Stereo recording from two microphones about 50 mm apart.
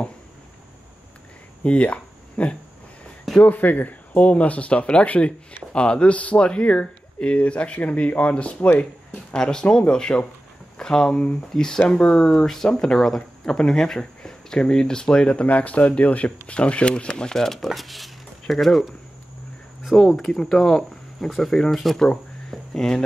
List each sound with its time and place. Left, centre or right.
1.6 s a sound: left
3.3 s speech: left; by 12.3 s centre
12.3 s speech: centre
20.2 s speech: centre